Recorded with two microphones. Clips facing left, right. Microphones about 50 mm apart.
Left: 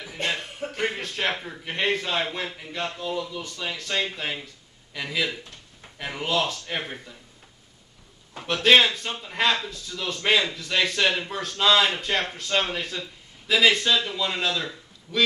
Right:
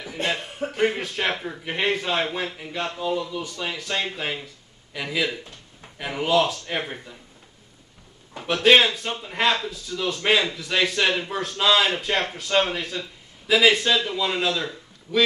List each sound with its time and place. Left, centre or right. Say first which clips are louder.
0.2 s a sound: right 2 dB; centre
0.7 s speech: right 5 dB; centre
8.6 s a man's voice: right 1 dB; centre